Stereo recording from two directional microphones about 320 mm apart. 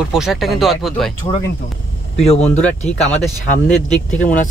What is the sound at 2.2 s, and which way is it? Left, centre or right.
Speech, centre.